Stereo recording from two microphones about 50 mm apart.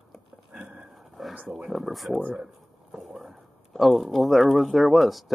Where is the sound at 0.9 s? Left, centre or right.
Centre.